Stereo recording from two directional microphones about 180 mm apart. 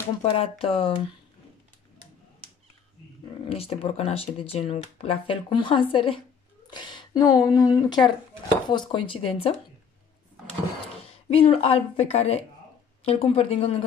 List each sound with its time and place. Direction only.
0.2 s speech: 35° left (ahead or behind)
3.4 s speech: 30° left (ahead or behind)
11.1 s speech: 30° left (ahead or behind)